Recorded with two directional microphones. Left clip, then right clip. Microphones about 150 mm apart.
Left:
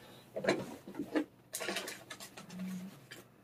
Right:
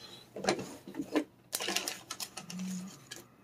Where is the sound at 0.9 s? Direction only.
80° right.